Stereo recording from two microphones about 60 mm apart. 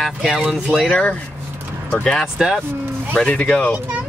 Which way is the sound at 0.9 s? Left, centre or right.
Left.